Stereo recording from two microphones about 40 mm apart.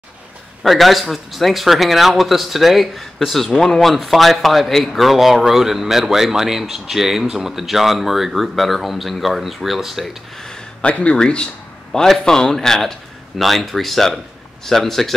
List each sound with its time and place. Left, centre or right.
0.7 s speech: centre
10.8 s speech: left
11.9 s a man's voice: centre